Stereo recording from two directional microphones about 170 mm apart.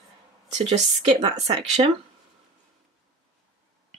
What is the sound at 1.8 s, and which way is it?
Speech, 35° right (ahead or behind).